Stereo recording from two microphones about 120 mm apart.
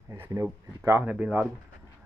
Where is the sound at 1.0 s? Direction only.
10° right (ahead or behind).